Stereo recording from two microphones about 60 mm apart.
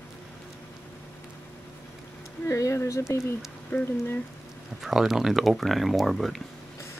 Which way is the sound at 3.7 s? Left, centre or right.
Left.